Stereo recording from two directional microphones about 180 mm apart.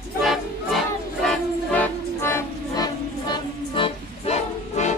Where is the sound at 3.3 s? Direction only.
30° left (ahead or behind).